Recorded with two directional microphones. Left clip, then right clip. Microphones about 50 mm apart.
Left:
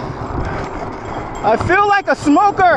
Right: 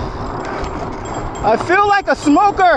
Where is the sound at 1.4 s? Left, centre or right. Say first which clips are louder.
Even; centre.